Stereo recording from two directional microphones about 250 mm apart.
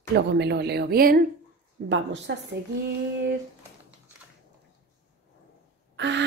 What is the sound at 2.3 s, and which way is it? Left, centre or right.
Speech, right.